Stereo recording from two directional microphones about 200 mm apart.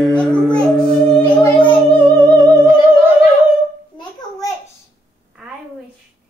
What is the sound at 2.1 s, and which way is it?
Music, 20° right (ahead or behind).